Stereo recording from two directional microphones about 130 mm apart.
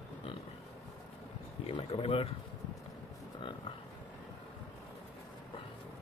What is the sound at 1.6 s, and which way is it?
Speech, 45° left (ahead or behind).